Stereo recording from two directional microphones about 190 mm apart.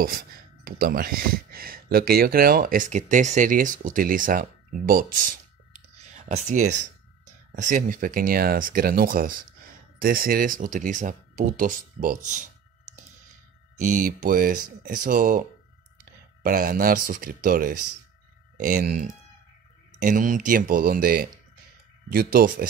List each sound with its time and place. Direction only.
0.7 s speech: 50° right (ahead or behind)
6.0 s a sound: 40° right (ahead or behind)
7.6 s speech: 45° right (ahead or behind)
13.7 s speech: 40° right (ahead or behind)
16.4 s speech: 50° right (ahead or behind)